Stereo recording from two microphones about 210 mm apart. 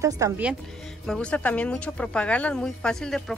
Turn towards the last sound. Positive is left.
turn(degrees=0)  # may be behind; listen again after turning